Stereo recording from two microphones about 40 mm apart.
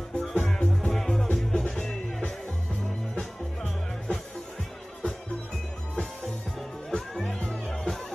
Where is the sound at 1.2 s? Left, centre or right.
Left.